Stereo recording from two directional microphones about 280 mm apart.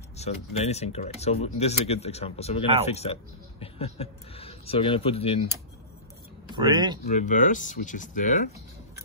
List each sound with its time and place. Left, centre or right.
0.2 s speech: left
6.5 s speech: centre
7.1 s speech: left